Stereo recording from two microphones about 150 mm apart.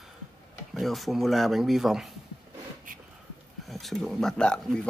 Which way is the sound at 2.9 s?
65° right (ahead or behind).